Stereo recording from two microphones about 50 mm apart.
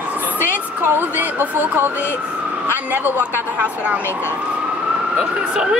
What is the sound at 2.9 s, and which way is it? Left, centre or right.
Speech, right.